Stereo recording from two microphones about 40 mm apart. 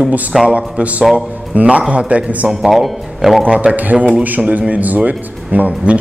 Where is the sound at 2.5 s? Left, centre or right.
Centre.